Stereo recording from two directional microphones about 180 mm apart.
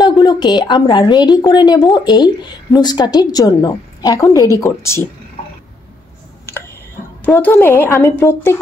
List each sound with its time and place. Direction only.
0.0 s a woman's voice: 25° left (ahead or behind)
7.2 s a woman's voice: 10° left (ahead or behind)